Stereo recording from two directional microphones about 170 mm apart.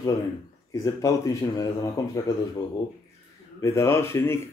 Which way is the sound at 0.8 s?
20° left (ahead or behind).